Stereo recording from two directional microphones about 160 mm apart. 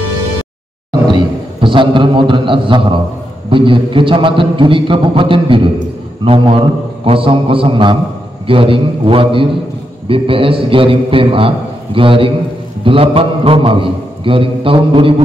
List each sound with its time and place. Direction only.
1.0 s a man's voice: 30° right (ahead or behind)